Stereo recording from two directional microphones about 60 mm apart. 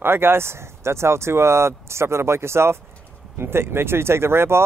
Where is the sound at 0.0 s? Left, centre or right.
Right.